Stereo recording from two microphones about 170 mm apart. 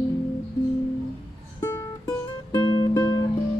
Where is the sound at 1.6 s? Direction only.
20° left (ahead or behind).